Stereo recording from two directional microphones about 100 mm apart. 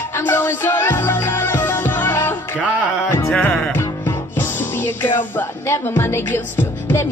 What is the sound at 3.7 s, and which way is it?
Music, 20° left (ahead or behind).